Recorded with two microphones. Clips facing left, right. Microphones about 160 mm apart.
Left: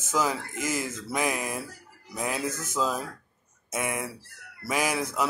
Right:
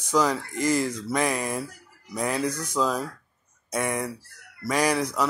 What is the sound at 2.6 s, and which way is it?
Speech, 5° left (ahead or behind).